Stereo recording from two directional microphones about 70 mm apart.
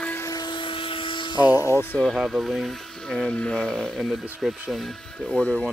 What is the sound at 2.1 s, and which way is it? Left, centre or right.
Speech, centre.